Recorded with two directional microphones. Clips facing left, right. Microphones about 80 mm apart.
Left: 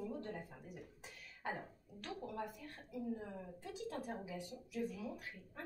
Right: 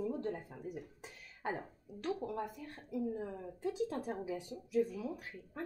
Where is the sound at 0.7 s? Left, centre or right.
Right.